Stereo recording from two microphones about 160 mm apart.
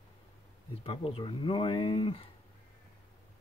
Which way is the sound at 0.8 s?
35° left (ahead or behind).